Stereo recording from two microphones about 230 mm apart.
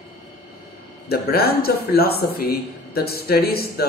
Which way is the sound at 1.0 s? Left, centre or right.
Left.